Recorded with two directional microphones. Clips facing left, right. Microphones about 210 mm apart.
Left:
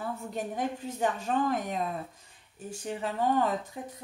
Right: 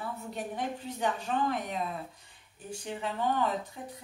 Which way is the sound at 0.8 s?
45° left (ahead or behind).